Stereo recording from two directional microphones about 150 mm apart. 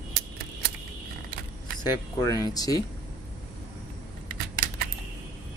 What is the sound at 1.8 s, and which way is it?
Speech, 25° left (ahead or behind).